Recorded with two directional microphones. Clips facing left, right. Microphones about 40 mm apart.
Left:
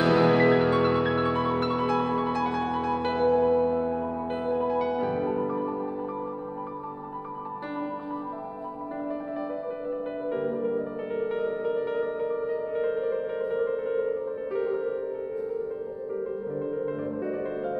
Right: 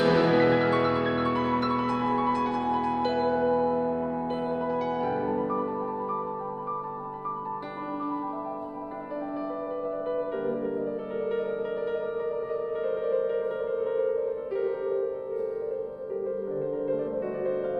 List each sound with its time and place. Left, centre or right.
0.0 s music: centre
3.4 s music: centre
4.6 s music: centre
5.0 s music: centre
11.1 s music: centre
13.0 s music: centre